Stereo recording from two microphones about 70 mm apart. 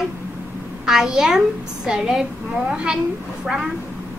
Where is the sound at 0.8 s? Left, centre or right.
Centre.